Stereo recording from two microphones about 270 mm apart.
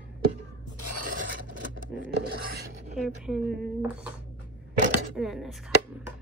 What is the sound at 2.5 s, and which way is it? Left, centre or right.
Filing, right.